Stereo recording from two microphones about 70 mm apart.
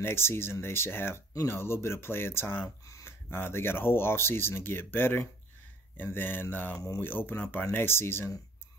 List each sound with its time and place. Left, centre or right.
0.0 s speech: left